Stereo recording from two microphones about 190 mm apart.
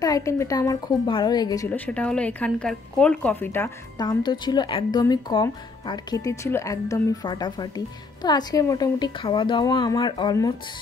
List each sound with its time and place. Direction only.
0.0 s speech: 15° left (ahead or behind)
1.7 s a woman's voice: 5° left (ahead or behind)
4.0 s speech: 25° left (ahead or behind)